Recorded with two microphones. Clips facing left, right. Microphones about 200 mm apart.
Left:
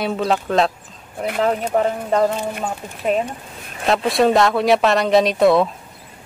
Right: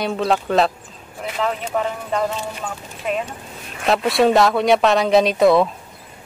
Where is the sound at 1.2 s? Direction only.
50° left (ahead or behind).